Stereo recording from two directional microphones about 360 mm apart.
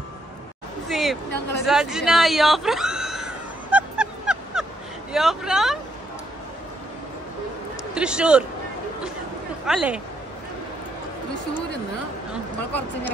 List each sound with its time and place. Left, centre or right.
0.8 s a sound: centre
5.1 s speech: centre
7.9 s speech: centre
9.7 s speech: centre